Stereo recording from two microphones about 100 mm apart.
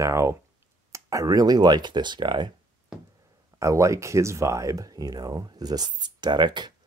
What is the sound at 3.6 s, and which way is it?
Speech, 30° right (ahead or behind).